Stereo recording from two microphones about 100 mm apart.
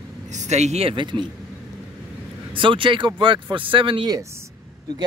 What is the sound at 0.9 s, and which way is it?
Speech, 55° right (ahead or behind).